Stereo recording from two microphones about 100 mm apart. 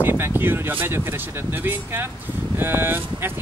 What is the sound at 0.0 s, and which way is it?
Speech, 20° right (ahead or behind).